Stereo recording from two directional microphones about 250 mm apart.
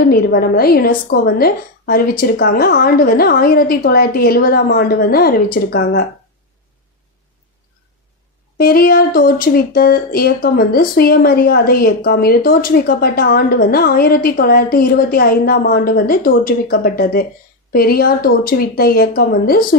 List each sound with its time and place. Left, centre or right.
0.0 s speech: left
8.5 s speech: left